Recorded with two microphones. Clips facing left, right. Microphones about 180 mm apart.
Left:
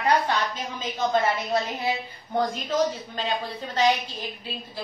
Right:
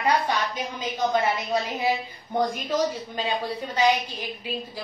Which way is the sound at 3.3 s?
15° right (ahead or behind).